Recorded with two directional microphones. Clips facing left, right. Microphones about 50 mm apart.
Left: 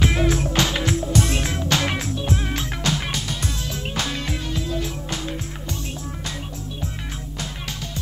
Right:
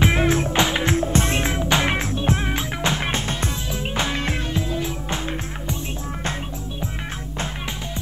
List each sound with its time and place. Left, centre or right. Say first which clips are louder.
0.0 s music: right 2 dB; right
0.9 s music: right 1 dB; right
2.5 s music: right 2 dB; right
3.6 s music: right 3 dB; right
7.3 s music: right 4 dB; right